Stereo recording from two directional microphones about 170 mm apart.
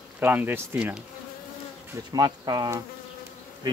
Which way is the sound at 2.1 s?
25° right (ahead or behind).